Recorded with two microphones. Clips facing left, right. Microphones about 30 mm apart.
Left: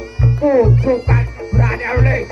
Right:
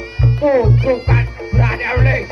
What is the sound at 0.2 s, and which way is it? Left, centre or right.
Music, right.